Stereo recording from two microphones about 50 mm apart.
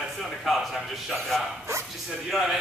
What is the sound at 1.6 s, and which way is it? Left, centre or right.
Bow-wow, right.